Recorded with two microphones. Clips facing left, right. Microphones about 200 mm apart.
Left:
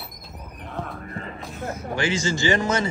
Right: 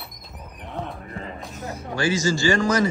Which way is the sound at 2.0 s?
25° left (ahead or behind).